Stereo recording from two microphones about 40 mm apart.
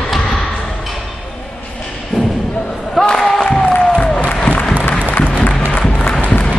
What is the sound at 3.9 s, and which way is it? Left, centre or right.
Applause, left.